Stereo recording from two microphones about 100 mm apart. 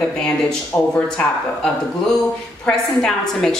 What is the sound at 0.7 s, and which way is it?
Speech, 20° left (ahead or behind).